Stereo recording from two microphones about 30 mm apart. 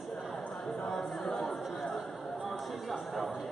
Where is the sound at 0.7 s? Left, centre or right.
Left.